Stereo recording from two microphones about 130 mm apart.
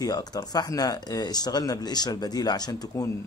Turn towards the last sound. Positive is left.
turn(degrees=30)  # may be behind; listen again after turning